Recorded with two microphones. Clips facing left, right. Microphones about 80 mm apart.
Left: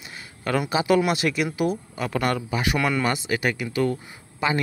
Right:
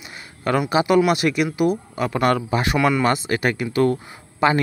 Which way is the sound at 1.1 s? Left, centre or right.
Centre.